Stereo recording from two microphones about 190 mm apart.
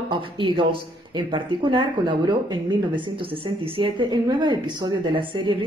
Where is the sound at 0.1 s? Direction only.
25° right (ahead or behind).